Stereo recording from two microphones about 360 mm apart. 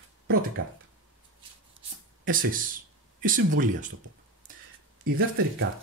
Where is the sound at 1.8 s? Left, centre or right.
Centre.